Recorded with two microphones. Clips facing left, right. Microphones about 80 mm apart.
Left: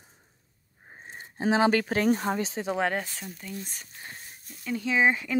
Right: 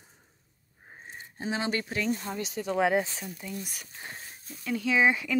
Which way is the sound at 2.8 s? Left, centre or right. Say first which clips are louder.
Right 6 dB; centre.